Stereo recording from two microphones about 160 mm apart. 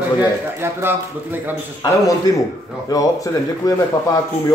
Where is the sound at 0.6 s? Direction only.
15° right (ahead or behind).